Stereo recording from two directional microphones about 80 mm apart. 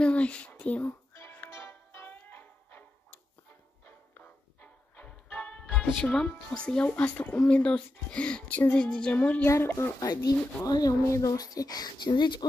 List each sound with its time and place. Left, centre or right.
0.0 s a sound: centre
1.5 s music: left; by 6.3 s centre
6.5 s speech: centre
9.5 s speech: left
9.9 s speech: left